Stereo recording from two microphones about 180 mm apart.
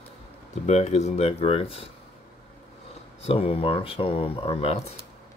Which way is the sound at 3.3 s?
30° left (ahead or behind).